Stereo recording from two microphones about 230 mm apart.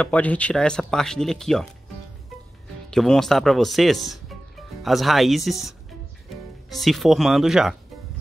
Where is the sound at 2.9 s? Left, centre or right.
Centre.